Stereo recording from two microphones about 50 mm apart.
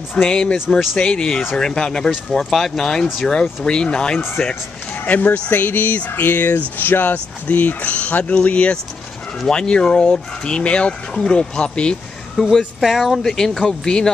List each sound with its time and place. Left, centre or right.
0.3 s speech: centre
5.0 s speech: left
12.4 s speech: centre
12.8 s speech: centre
13.2 s speech: centre